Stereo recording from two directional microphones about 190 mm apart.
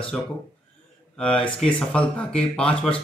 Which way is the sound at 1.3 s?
25° left (ahead or behind).